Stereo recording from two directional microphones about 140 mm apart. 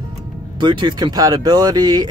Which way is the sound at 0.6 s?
35° right (ahead or behind).